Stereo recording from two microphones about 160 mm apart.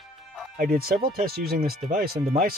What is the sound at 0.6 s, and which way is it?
Speech, 65° right (ahead or behind).